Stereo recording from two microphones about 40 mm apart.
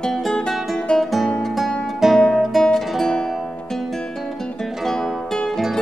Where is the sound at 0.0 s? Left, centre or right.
Centre.